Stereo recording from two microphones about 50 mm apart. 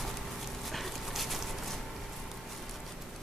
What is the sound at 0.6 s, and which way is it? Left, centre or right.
Dog, centre.